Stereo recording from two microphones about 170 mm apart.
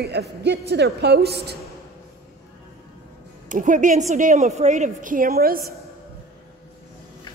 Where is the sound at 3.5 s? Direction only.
50° right (ahead or behind).